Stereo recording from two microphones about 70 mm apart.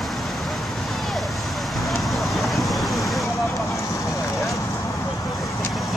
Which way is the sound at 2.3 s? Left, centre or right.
Centre.